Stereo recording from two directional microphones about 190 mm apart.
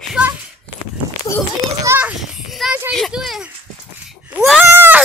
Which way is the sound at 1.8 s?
10° right (ahead or behind).